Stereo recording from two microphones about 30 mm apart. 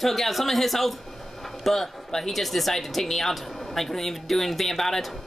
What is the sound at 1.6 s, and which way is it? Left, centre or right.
Speech, centre.